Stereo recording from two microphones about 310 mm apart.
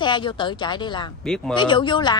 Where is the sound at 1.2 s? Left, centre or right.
Centre.